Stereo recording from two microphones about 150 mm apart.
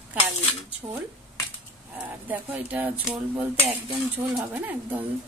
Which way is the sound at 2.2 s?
10° right (ahead or behind).